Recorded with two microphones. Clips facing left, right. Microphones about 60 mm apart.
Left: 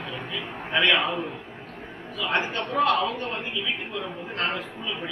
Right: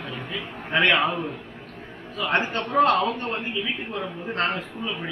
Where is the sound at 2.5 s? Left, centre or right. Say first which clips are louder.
Right 4 dB; right.